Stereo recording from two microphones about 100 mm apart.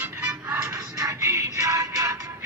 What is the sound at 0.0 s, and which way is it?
Music, 25° right (ahead or behind).